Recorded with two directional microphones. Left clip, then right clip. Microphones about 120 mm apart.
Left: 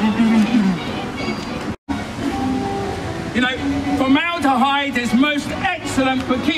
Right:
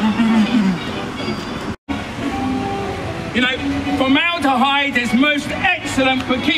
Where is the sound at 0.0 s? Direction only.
Centre (ahead or behind).